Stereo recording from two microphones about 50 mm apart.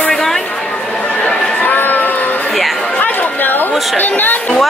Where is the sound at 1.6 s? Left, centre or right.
Left.